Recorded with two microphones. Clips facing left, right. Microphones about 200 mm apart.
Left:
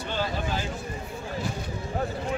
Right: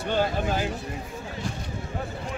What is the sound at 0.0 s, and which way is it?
Speech, 50° right (ahead or behind).